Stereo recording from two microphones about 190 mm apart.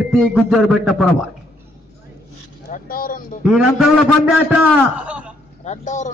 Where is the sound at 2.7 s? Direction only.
50° left (ahead or behind).